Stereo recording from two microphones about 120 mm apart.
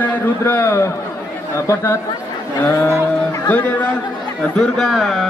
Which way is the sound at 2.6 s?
20° left (ahead or behind).